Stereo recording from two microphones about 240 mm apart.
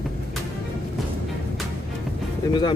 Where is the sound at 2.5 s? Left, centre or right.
Centre.